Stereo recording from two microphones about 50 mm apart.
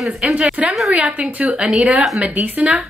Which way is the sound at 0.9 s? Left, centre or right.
Centre.